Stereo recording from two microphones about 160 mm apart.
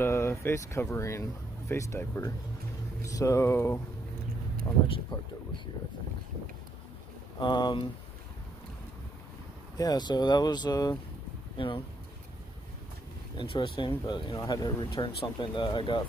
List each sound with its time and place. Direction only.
0.0 s speech: 15° left (ahead or behind)
4.8 s speech: 35° left (ahead or behind)
7.3 s speech: 30° left (ahead or behind)
9.8 s speech: 25° left (ahead or behind)
13.4 s speech: 30° left (ahead or behind)